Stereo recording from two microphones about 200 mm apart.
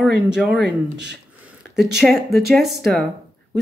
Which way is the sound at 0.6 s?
60° right (ahead or behind).